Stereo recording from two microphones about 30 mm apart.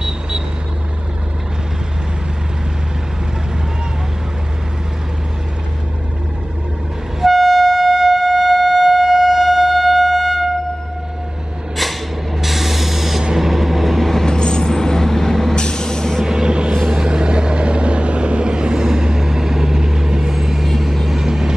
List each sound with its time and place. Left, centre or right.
7.2 s train: centre
12.4 s vehicle: centre
14.2 s vehicle: left; by 15.5 s centre
15.5 s vehicle: left
16.4 s vehicle: right; by 20.6 s centre
20.6 s vehicle: centre
21.2 s vehicle: centre